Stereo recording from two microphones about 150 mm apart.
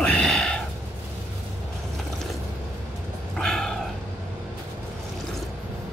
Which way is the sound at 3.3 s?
5° left (ahead or behind).